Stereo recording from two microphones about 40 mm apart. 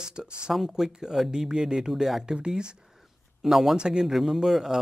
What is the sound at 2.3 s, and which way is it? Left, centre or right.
Speech, right.